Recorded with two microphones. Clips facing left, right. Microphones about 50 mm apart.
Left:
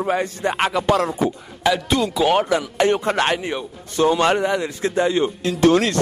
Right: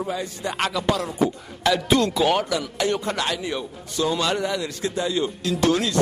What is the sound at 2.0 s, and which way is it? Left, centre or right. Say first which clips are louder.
Speech: left 2 dB; centre.